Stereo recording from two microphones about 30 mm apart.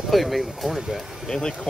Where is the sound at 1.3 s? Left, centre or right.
Left.